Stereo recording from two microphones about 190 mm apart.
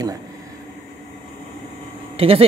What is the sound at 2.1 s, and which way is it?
Speech, 30° right (ahead or behind).